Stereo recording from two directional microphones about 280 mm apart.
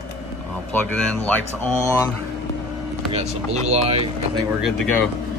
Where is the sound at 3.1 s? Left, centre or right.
Right.